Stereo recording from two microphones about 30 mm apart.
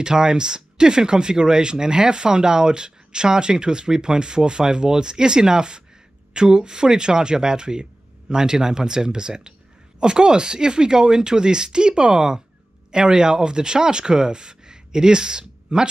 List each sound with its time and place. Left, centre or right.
0.0 s speech: right